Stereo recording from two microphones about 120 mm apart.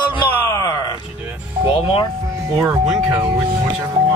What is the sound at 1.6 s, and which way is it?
Speech, 45° left (ahead or behind).